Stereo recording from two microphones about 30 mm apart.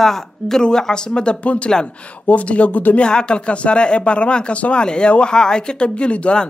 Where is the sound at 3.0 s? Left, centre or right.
Left.